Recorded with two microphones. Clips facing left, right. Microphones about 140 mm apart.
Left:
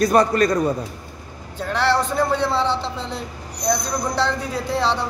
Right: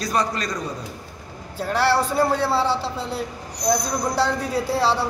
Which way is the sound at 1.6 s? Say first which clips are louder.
Even; 10° right (ahead or behind).